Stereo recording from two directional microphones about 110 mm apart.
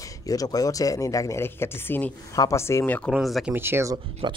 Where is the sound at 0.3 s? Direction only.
35° left (ahead or behind); by 2.1 s 15° left (ahead or behind).